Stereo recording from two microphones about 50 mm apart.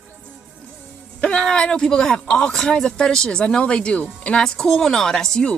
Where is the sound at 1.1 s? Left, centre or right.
Centre.